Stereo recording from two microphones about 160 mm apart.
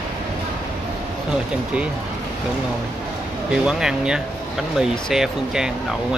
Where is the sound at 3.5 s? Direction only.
5° right (ahead or behind).